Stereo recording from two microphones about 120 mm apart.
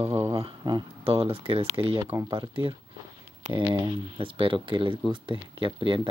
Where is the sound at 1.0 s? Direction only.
50° right (ahead or behind).